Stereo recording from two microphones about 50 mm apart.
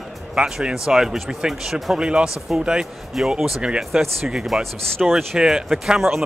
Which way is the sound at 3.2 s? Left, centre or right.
Centre.